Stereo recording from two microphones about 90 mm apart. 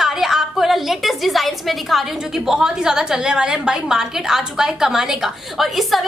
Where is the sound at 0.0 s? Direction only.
5° right (ahead or behind).